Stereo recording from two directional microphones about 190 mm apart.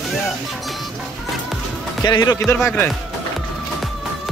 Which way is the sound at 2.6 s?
5° left (ahead or behind).